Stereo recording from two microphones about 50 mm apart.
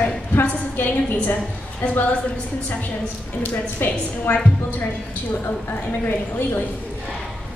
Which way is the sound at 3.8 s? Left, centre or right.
Left.